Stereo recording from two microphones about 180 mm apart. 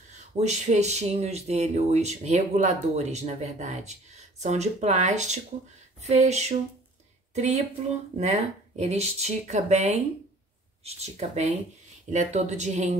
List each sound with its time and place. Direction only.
0.4 s speech: 40° right (ahead or behind)